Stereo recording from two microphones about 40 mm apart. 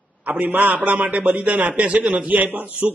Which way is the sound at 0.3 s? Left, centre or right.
Right.